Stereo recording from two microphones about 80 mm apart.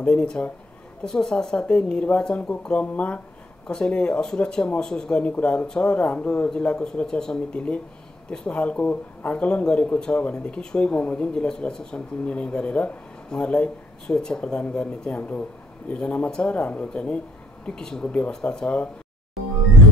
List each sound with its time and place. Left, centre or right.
0.0 s speech: centre